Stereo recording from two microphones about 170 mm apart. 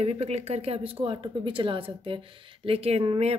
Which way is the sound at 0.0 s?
40° right (ahead or behind).